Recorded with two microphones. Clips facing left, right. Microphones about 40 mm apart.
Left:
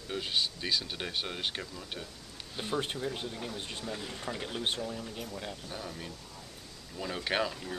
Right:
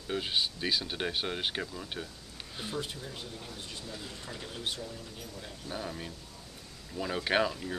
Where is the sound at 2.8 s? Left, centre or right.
Left.